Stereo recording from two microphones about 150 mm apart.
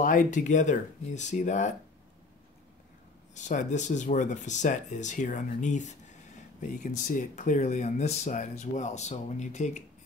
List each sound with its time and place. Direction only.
0.0 s speech: 60° left (ahead or behind)
3.3 s speech: 55° left (ahead or behind)
7.1 s speech: 60° left (ahead or behind)